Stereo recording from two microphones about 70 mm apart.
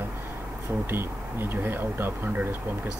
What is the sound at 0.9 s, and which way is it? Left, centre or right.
Speech, right.